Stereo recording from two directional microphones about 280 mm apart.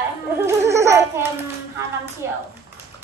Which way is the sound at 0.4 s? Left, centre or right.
Centre.